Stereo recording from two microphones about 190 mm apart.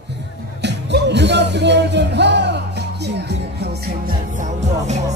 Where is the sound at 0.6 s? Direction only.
65° right (ahead or behind).